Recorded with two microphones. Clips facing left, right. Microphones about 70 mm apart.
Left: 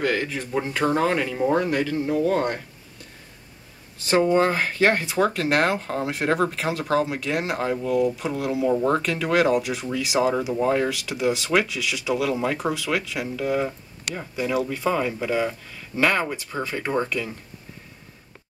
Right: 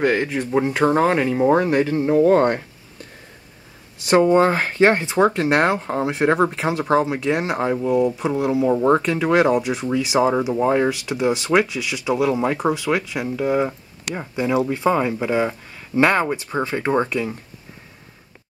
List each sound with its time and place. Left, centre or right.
0.0 s speech: right
4.1 s speech: right